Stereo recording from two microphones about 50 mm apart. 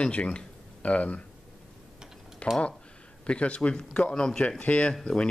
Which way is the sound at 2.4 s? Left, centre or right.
Left.